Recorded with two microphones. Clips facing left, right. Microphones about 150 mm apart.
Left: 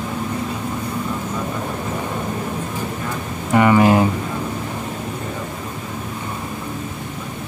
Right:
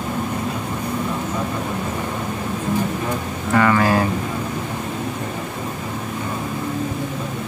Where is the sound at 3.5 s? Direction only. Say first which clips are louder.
Left 3 dB; 20° left (ahead or behind).